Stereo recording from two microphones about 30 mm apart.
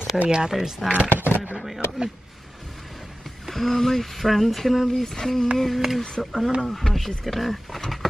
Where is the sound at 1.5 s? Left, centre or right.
Centre.